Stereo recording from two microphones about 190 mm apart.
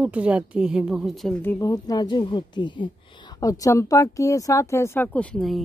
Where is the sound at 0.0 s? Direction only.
5° right (ahead or behind).